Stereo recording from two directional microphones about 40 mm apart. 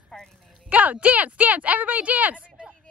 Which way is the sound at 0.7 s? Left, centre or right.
Right.